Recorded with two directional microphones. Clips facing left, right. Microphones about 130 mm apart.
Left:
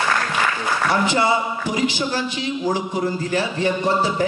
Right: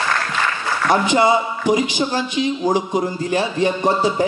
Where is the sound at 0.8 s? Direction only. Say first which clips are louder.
Right 4 dB; 15° right (ahead or behind).